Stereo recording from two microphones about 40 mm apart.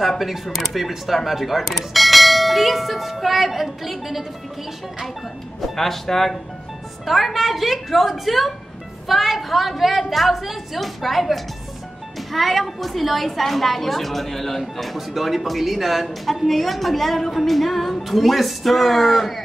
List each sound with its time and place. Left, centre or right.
0.2 s a woman's voice: centre
5.8 s a woman's voice: centre